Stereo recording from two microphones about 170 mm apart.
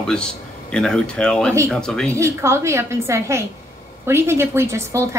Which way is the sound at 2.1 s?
15° right (ahead or behind).